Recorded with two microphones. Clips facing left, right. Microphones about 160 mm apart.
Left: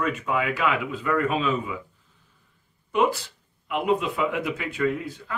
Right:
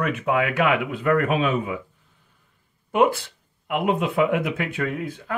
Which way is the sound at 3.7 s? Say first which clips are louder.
Right 1 dB; 60° right (ahead or behind).